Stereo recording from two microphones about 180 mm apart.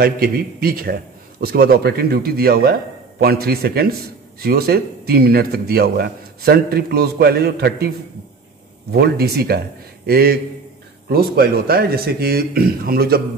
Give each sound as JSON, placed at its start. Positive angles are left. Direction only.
{"t": 0.0, "sound": "a man's voice", "side_deg": -55}
{"t": 8.9, "sound": "a man's voice", "side_deg": -65}